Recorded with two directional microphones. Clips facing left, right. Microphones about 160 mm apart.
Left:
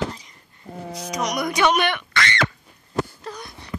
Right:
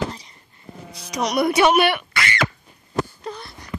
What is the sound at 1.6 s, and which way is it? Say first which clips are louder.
Speech: right 2 dB; 10° right (ahead or behind).